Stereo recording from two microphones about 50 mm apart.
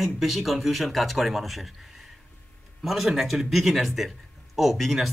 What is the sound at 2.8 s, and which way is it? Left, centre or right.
Speech, centre.